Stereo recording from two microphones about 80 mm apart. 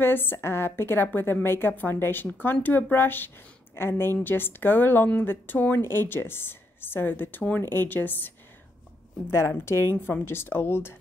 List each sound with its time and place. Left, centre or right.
0.0 s a woman's voice: left
9.3 s speech: left